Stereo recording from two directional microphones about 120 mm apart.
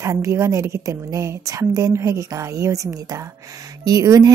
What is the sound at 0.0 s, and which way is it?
Speech, 25° right (ahead or behind).